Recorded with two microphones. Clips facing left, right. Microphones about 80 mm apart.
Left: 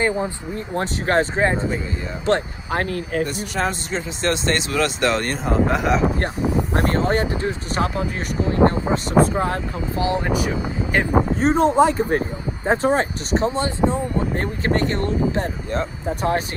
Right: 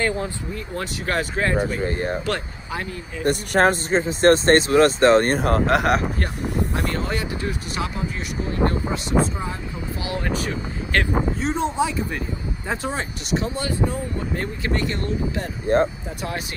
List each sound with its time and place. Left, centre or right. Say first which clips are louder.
0.0 s speech: left 3 dB; centre
0.7 s speech: left 6 dB; left
2.7 s speech: left 8 dB; left
3.3 s speech: right 6 dB; right
5.7 s speech: right 1 dB; right
6.7 s speech: left 5 dB; left
7.0 s speech: left 6 dB; left
8.9 s speech: left 5 dB; left
9.9 s speech: left 8 dB; left
10.2 s speech: left 4 dB; centre
11.3 s speech: left 7 dB; left
14.3 s speech: left 4 dB; left
15.7 s speech: right 8 dB; right
16.2 s speech: left 8 dB; left